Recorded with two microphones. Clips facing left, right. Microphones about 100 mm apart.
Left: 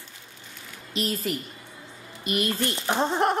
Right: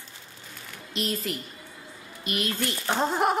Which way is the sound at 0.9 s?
Centre (ahead or behind).